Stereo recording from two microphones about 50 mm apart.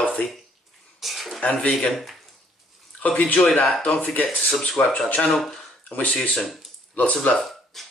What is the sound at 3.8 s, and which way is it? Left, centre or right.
Speech, left.